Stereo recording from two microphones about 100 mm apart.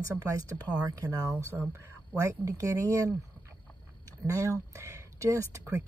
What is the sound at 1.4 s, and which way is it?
Speech, 20° right (ahead or behind).